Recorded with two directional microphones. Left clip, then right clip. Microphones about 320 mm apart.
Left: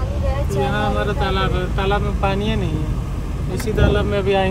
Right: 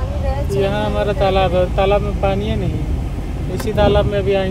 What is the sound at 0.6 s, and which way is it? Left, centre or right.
Speech, centre.